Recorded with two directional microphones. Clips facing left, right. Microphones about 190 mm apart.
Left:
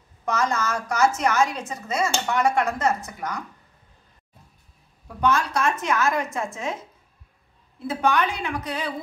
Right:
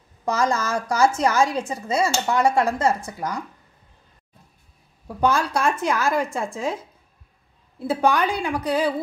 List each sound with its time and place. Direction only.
0.2 s a woman's voice: 30° right (ahead or behind)
5.0 s a woman's voice: 35° right (ahead or behind)
7.8 s a woman's voice: 35° right (ahead or behind)